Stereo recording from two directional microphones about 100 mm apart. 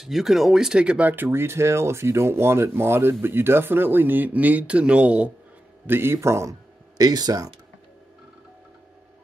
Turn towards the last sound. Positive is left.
turn(degrees=-40)  # may be behind; listen again after turning